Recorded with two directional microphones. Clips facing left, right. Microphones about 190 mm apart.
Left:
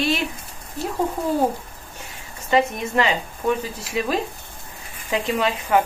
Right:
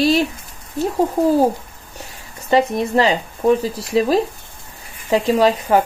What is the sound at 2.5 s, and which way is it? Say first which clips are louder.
A woman's voice: right 4 dB; 35° right (ahead or behind).